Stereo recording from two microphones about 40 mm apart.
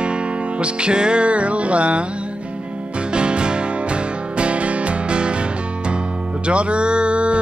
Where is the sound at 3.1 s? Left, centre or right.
Right.